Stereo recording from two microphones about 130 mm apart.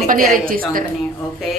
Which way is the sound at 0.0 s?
90° right.